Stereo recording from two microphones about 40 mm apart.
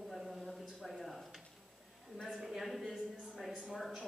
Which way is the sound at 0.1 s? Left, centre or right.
Centre.